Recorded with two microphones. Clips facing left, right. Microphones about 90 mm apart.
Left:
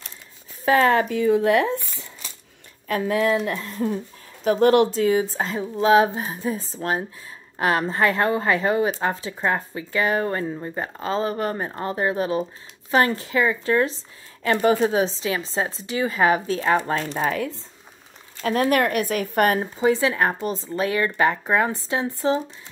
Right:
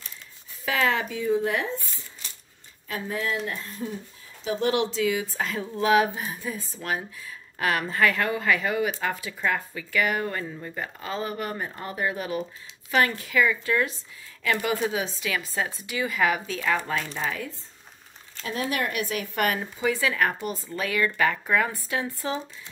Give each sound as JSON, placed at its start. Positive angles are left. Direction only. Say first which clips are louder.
{"t": 0.7, "sound": "speech", "louder": "left 7 dB", "side_deg": 40}
{"t": 1.0, "sound": "speech", "louder": "left 6 dB", "side_deg": 65}